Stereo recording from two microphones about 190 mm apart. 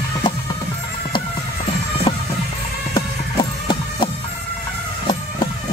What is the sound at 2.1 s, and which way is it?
Music, 25° left (ahead or behind).